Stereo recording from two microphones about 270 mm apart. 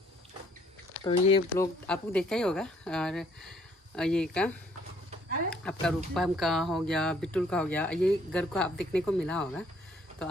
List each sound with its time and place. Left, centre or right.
1.0 s speech: centre
1.9 s speech: centre